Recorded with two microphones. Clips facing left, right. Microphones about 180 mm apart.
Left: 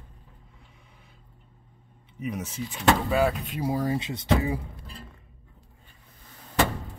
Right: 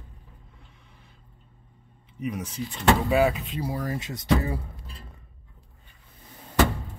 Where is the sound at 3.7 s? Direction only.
25° left (ahead or behind).